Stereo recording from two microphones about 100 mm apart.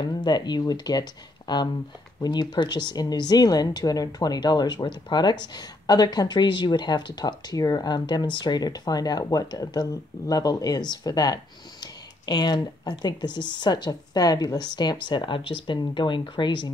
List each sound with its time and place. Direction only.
0.0 s speech: 45° left (ahead or behind)